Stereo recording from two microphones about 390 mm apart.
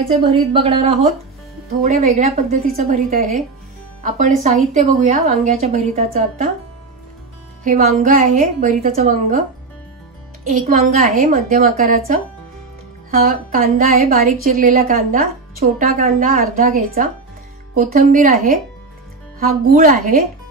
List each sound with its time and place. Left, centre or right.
0.2 s a woman's voice: centre
7.6 s a woman's voice: right
10.6 s a woman's voice: centre